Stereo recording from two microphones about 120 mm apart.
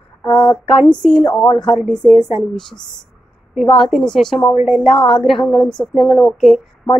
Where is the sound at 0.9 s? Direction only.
5° left (ahead or behind).